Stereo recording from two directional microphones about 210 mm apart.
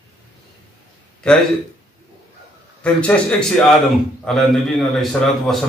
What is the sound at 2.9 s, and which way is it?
A man's voice, 5° left (ahead or behind).